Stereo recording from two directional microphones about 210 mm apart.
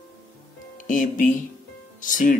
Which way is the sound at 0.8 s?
40° left (ahead or behind).